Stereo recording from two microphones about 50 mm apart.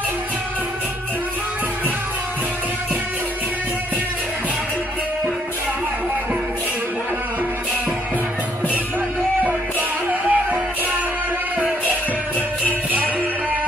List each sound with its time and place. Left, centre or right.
9.4 s music: right
12.6 s music: right